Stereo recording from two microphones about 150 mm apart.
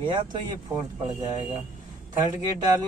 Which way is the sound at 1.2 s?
20° right (ahead or behind).